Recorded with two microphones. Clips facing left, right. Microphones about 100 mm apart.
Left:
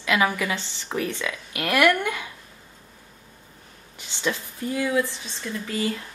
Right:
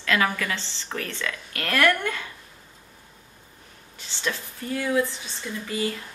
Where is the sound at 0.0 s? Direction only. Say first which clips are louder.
Left 2 dB; 15° left (ahead or behind).